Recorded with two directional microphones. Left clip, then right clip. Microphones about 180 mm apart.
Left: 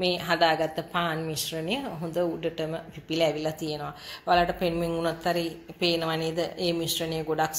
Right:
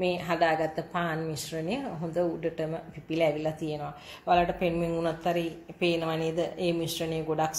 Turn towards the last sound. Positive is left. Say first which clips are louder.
# left 1 dB
turn(degrees=-5)  # may be behind; listen again after turning